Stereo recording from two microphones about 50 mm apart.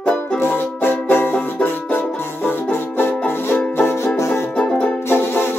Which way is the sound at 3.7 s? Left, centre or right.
Left.